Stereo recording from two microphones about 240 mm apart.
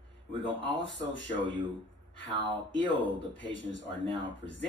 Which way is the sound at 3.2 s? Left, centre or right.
Left.